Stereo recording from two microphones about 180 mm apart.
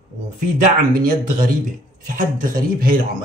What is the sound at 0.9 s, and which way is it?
Speech, 50° right (ahead or behind).